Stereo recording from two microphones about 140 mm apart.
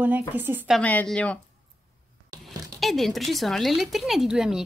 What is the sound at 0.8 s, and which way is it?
Speech, 10° left (ahead or behind).